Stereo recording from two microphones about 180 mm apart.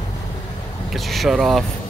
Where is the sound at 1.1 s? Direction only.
Centre (ahead or behind).